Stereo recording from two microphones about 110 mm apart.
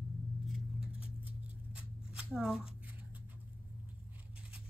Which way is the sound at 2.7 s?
15° right (ahead or behind).